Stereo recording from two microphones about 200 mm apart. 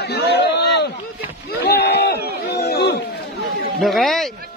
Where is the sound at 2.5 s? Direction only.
55° left (ahead or behind).